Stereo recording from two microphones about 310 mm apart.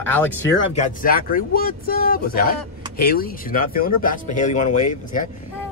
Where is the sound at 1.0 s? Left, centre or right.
Left.